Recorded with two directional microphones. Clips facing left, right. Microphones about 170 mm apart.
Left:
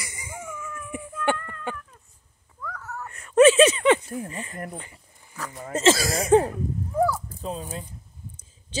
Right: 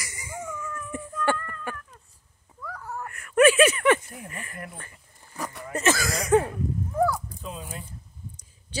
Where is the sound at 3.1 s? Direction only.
25° left (ahead or behind).